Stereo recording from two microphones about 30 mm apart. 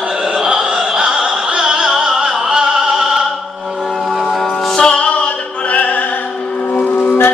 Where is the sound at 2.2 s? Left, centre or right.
Right.